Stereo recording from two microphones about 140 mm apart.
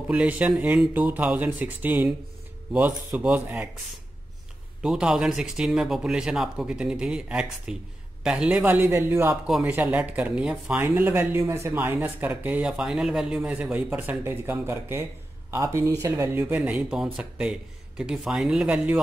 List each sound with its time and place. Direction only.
0.1 s speech: 10° right (ahead or behind)
4.8 s speech: 5° right (ahead or behind)
9.3 s speech: 5° right (ahead or behind); by 16.4 s 25° right (ahead or behind)
16.4 s speech: 10° right (ahead or behind)